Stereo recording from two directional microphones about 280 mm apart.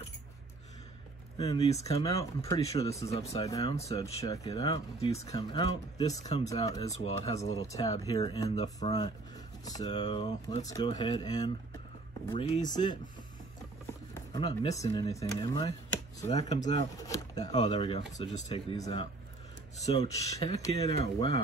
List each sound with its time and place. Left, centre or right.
1.4 s speech: left
7.3 s speech: left
14.1 s a sound: centre
14.6 s speech: centre
17.1 s speech: centre